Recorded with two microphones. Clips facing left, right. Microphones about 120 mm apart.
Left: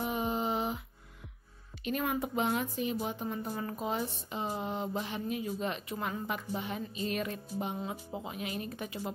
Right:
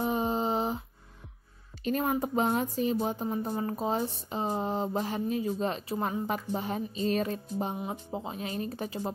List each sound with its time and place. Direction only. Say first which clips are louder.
0.0 s a sound: right 4 dB; 35° right (ahead or behind)
1.9 s a woman's voice: right 4 dB; 35° right (ahead or behind)
7.7 s speech: right 2 dB; 15° right (ahead or behind)
8.1 s a woman's voice: right 3 dB; 30° right (ahead or behind)